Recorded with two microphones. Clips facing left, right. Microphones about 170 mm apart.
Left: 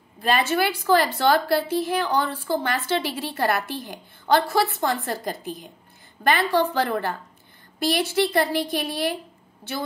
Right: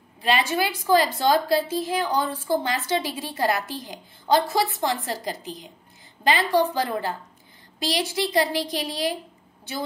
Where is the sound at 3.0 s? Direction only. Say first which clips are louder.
Left 1 dB; 65° left (ahead or behind).